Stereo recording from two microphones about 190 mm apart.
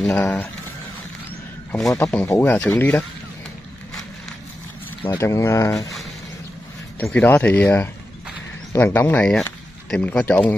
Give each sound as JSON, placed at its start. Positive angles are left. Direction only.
{"t": 0.0, "sound": "speech", "side_deg": 5}
{"t": 1.7, "sound": "speech", "side_deg": 0}
{"t": 5.2, "sound": "speech", "side_deg": 15}
{"t": 7.0, "sound": "speech", "side_deg": 10}